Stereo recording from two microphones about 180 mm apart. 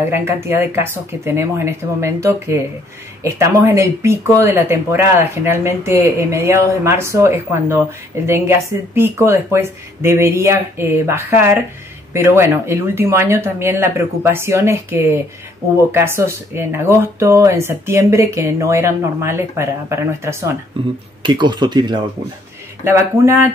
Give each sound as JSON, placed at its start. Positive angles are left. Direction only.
{"t": 0.1, "sound": "speech", "side_deg": -15}
{"t": 21.2, "sound": "speech", "side_deg": -25}
{"t": 22.8, "sound": "speech", "side_deg": -15}